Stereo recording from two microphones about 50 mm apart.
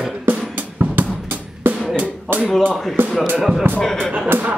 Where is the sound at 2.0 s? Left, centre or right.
Right.